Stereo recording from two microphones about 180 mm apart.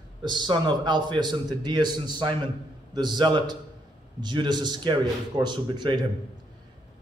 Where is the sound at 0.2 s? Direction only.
25° right (ahead or behind).